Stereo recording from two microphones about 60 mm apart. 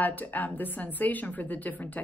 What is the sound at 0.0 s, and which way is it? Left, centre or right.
A woman's voice, left.